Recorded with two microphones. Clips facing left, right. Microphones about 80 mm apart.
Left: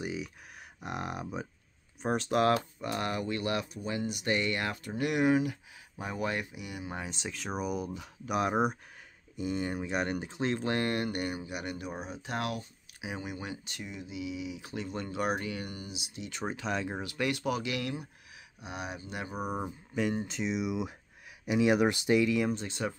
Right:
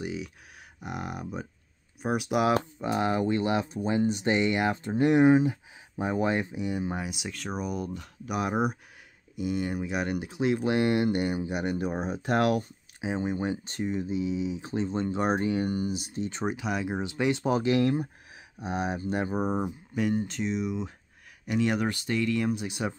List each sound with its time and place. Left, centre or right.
0.0 s speech: centre
2.0 s speech: centre; by 7.0 s right
7.0 s speech: centre
7.2 s speech: centre; by 12.2 s right
12.2 s speech: right
13.0 s speech: right
16.4 s speech: centre
17.0 s speech: right
20.0 s speech: centre
22.5 s speech: centre